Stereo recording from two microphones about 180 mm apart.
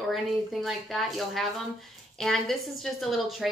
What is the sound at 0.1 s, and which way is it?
Speech, centre (ahead or behind).